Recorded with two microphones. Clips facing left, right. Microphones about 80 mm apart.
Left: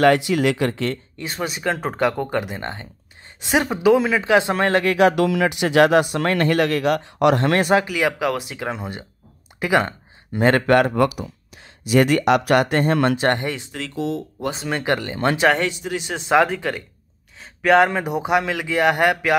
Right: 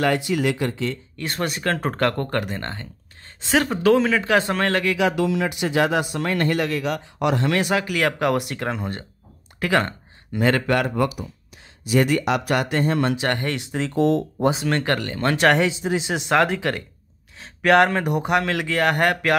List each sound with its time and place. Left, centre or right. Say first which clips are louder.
0.0 s speech: left 5 dB; left
1.2 s speech: even; centre; by 4.9 s left
4.9 s speech: left 4 dB; left
7.4 s speech: left 3 dB; left
8.2 s speech: right 1 dB; centre
10.3 s speech: left 3 dB; left
11.0 s speech: left 4 dB; left
13.7 s speech: right 5 dB; right
13.9 s speech: right 6 dB; right
14.7 s speech: even; centre
15.3 s speech: right 1 dB; centre
15.8 s speech: right 3 dB; centre
16.4 s speech: right 1 dB; centre